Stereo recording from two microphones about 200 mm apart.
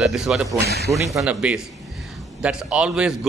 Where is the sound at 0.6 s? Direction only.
55° right (ahead or behind).